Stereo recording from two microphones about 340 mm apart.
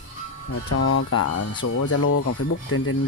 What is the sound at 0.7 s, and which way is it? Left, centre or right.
Speech, left.